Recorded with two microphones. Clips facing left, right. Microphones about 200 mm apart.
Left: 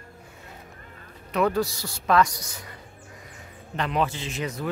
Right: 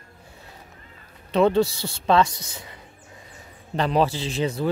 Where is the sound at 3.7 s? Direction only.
35° right (ahead or behind).